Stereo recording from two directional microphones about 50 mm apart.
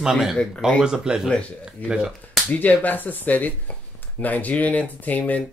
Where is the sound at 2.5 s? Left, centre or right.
Left.